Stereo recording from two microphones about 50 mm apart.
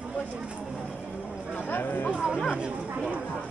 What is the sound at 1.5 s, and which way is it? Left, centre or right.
Speech, left.